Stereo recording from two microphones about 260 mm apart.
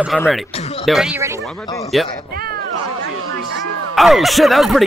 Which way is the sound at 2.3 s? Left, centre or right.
Right.